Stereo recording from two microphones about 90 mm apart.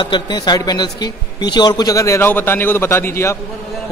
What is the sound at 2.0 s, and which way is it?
Speech, 35° left (ahead or behind).